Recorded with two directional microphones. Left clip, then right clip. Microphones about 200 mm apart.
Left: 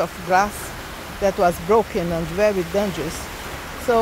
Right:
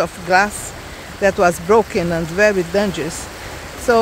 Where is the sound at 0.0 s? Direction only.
20° right (ahead or behind).